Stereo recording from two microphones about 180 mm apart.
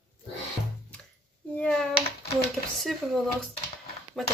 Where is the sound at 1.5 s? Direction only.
5° left (ahead or behind).